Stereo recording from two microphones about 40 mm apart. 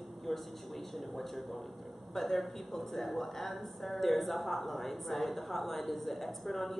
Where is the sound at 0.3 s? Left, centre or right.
Centre.